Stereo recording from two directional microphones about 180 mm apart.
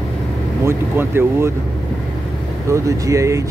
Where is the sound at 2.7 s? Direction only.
15° right (ahead or behind).